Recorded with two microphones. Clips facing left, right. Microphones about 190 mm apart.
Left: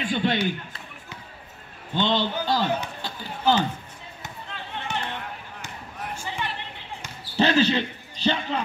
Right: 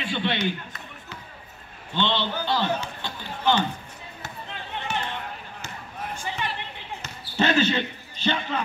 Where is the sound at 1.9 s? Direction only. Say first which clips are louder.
Left 2 dB; 40° left (ahead or behind).